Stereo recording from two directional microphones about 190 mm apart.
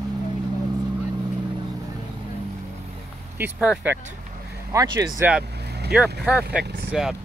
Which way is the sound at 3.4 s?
5° right (ahead or behind).